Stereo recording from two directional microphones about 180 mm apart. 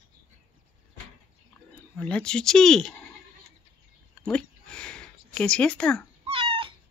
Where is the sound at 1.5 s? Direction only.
10° left (ahead or behind).